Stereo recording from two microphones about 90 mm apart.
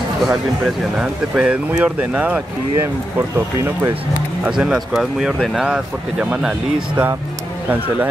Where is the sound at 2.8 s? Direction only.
25° right (ahead or behind).